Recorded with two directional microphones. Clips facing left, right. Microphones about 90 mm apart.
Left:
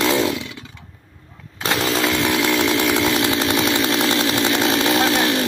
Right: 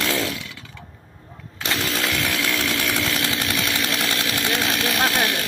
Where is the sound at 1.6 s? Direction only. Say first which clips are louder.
Left 5 dB; 90° left.